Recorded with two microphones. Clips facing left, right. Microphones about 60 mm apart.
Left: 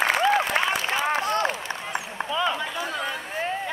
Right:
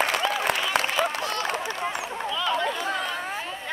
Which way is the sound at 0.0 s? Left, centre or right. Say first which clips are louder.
Left 3 dB; left.